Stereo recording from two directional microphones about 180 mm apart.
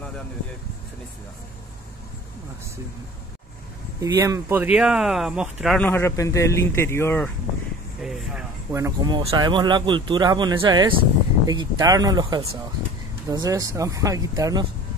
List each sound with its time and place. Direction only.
4.0 s speech: 20° right (ahead or behind)
4.7 s speech: 5° right (ahead or behind)
5.9 s a man's voice: 15° left (ahead or behind)
8.0 s speech: centre (ahead or behind)
8.7 s speech: 20° right (ahead or behind)